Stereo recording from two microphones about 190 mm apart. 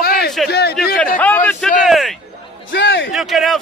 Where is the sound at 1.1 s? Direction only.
10° left (ahead or behind).